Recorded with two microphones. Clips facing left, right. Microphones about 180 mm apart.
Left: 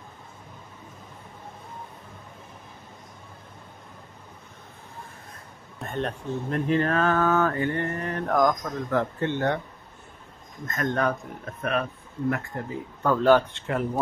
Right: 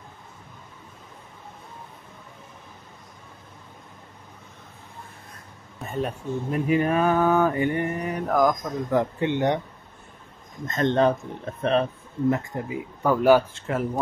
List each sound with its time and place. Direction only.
5.8 s speech: 5° right (ahead or behind)
10.7 s speech: 25° right (ahead or behind)
12.4 s speech: 15° right (ahead or behind)